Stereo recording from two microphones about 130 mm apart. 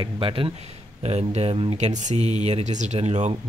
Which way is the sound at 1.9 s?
60° right (ahead or behind).